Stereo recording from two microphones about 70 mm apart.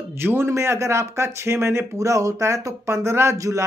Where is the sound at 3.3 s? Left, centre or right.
Right.